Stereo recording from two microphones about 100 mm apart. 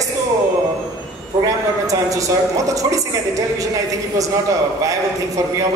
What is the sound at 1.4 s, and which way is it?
A man's voice, 35° right (ahead or behind).